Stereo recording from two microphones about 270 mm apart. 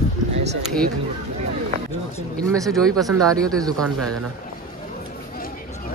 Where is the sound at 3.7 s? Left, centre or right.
Centre.